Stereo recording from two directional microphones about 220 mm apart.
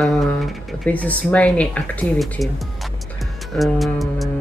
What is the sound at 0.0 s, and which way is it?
Speech, centre (ahead or behind).